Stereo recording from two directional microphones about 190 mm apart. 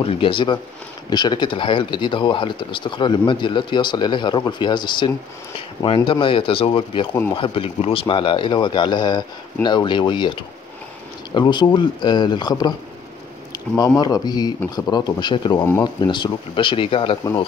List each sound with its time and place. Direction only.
0.0 s speech: 25° left (ahead or behind)